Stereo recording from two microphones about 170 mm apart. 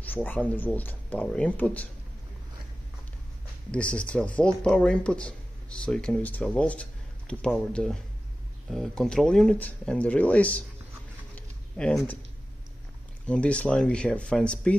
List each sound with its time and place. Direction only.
0.0 s speech: 10° left (ahead or behind)
3.7 s speech: 5° left (ahead or behind)
11.3 s a sound: 5° left (ahead or behind)
13.3 s speech: 5° left (ahead or behind)